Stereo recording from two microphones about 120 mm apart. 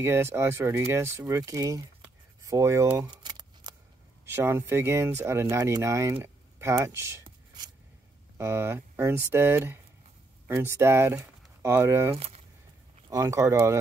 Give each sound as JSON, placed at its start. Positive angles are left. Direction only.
{"t": 0.0, "sound": "speech", "side_deg": -20}
{"t": 3.1, "sound": "keys jangling", "side_deg": -35}
{"t": 4.3, "sound": "speech", "side_deg": -20}
{"t": 8.4, "sound": "speech", "side_deg": -20}